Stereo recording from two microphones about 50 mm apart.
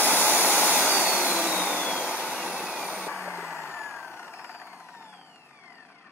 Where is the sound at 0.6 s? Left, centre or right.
Right.